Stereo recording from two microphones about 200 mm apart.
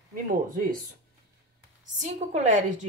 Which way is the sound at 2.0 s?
35° right (ahead or behind).